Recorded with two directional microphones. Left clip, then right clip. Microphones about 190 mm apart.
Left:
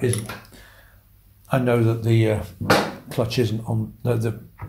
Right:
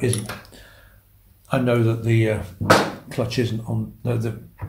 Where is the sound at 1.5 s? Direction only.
30° left (ahead or behind).